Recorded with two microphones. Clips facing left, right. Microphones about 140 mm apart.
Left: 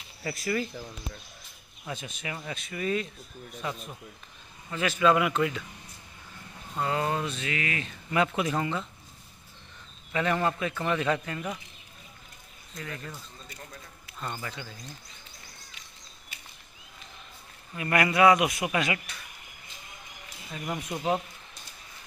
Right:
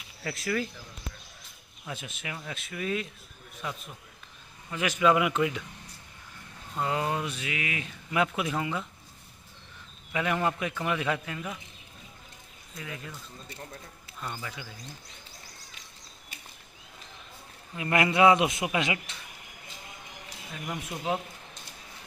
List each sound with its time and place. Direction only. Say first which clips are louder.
0.2 s speech: left 1 dB; 5° left (ahead or behind)
1.9 s speech: left 2 dB; 5° right (ahead or behind)
4.7 s speech: even; 15° right (ahead or behind)
6.8 s speech: left 1 dB; 15° right (ahead or behind)
10.1 s speech: left 1 dB; 10° right (ahead or behind)
12.7 s speech: left 1 dB; 10° right (ahead or behind)
14.2 s speech: left 2 dB; 5° right (ahead or behind)
17.7 s a man's voice: even; 20° right (ahead or behind)
20.5 s speech: left 3 dB; 5° left (ahead or behind)